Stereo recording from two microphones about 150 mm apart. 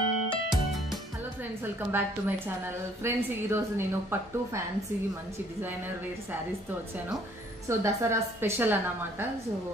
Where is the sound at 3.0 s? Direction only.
15° right (ahead or behind).